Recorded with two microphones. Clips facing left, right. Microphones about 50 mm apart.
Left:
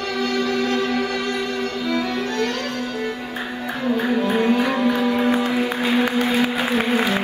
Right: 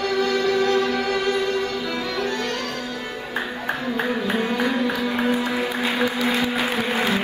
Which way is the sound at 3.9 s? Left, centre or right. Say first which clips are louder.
Left 4 dB; right.